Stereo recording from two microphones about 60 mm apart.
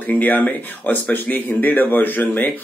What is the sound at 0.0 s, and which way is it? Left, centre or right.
Speech, left.